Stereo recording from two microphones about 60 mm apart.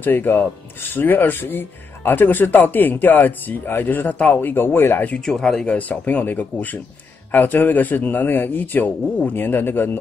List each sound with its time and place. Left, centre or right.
0.0 s speech: left
5.2 s speech: centre
5.7 s speech: left